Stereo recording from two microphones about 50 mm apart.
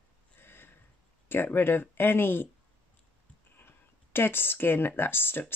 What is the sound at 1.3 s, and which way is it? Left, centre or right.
Speech, left.